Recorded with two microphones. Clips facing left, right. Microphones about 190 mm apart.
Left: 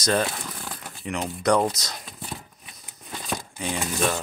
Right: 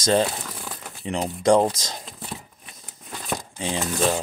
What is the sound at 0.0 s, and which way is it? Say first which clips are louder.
Speech: right 3 dB; 25° right (ahead or behind).